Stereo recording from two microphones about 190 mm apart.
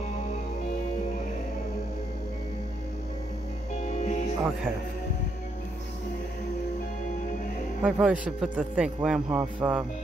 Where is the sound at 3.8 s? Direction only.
40° left (ahead or behind).